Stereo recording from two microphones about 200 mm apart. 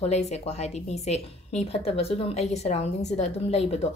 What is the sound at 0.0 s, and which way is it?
Speech, 35° left (ahead or behind).